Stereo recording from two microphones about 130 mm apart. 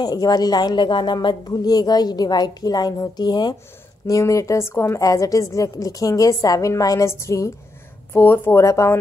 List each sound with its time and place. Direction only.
0.0 s a woman's voice: 30° left (ahead or behind)